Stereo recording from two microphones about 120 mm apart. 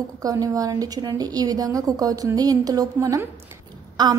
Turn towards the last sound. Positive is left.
turn(degrees=-35)  # may be behind; listen again after turning